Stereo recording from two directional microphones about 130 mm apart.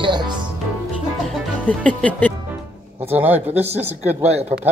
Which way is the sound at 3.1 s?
15° right (ahead or behind).